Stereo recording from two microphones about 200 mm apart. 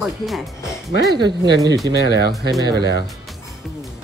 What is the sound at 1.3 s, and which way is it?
Speech, 60° right (ahead or behind).